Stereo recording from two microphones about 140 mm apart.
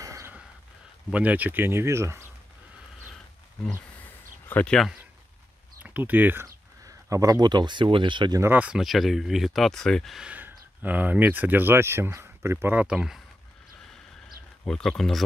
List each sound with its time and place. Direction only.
0.0 s a sound: 20° right (ahead or behind)
1.1 s speech: 10° right (ahead or behind)
4.5 s speech: 10° left (ahead or behind)
5.8 s speech: 15° right (ahead or behind); by 8.4 s 35° right (ahead or behind)
8.4 s speech: 15° right (ahead or behind)
14.7 s speech: 5° left (ahead or behind)